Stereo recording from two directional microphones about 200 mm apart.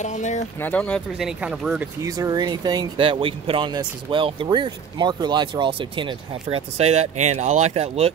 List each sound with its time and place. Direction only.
0.0 s speech: 35° left (ahead or behind)
0.6 s speech: 10° left (ahead or behind)
2.0 s speech: 15° right (ahead or behind)